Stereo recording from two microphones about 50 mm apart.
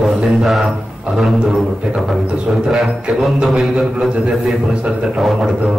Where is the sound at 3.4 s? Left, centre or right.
Centre.